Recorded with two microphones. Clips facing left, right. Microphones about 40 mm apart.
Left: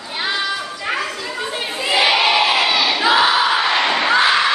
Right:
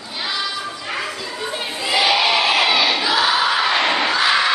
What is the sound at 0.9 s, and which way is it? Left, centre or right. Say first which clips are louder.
Chatter: left 5 dB; left.